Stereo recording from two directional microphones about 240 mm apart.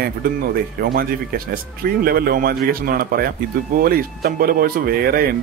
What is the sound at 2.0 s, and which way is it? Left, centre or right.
Speech, right.